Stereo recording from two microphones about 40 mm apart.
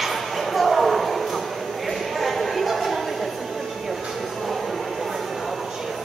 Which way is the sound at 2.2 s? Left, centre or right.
Centre.